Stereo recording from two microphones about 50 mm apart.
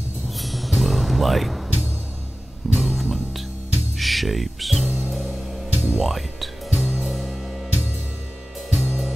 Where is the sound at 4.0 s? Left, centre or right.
Centre.